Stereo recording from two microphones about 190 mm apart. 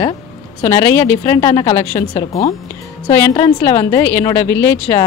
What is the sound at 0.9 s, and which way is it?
A woman's voice, 15° left (ahead or behind).